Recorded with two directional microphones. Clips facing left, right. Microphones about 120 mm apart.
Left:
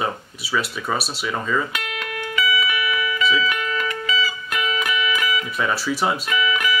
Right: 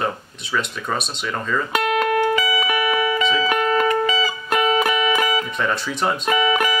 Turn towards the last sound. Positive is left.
turn(degrees=-40)  # may be behind; listen again after turning